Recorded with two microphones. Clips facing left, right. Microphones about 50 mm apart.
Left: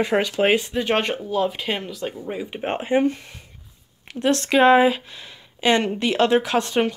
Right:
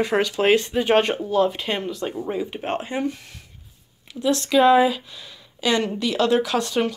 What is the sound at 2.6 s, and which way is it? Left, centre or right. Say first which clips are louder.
Speech: left 8 dB; left.